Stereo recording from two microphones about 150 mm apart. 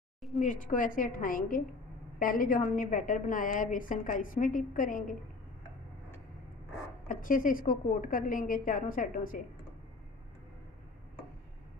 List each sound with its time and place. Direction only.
0.4 s a woman's voice: 60° left (ahead or behind)
7.1 s a woman's voice: 65° left (ahead or behind)